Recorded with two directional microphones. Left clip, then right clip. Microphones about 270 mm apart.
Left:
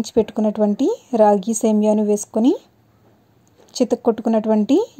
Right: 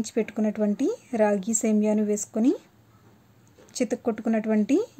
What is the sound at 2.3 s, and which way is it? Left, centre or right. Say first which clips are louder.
Speech: left 7 dB; centre.